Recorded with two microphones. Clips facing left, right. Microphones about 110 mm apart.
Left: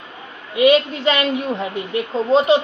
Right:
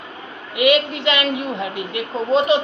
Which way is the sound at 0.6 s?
35° left (ahead or behind).